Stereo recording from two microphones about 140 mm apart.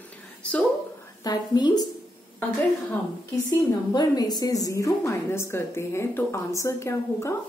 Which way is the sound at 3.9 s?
30° left (ahead or behind).